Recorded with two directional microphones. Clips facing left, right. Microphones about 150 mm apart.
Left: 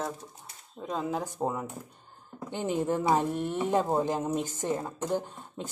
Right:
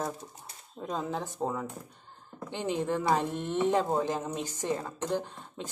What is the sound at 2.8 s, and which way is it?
Speech, 15° left (ahead or behind).